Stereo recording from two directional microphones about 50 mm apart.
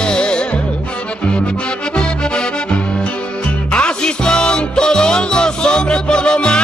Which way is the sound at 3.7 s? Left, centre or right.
Left.